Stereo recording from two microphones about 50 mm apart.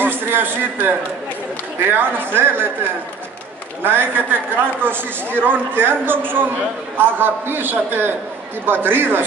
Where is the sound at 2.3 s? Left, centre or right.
Right.